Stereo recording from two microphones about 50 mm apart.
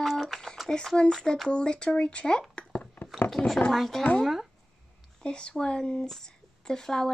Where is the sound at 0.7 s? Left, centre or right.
Centre.